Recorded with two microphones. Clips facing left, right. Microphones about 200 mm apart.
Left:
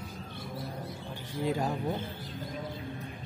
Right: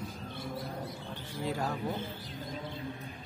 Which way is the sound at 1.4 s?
15° left (ahead or behind).